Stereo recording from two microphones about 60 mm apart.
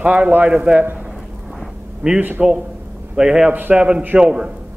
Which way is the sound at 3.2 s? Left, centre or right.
Centre.